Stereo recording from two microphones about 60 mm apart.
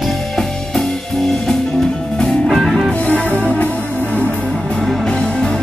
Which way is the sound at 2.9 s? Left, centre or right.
Left.